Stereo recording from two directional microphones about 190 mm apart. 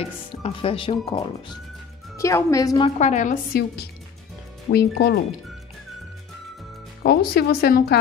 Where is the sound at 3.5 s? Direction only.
55° left (ahead or behind).